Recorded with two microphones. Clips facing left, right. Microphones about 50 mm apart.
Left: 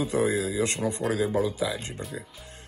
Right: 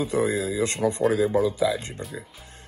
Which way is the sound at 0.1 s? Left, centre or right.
Right.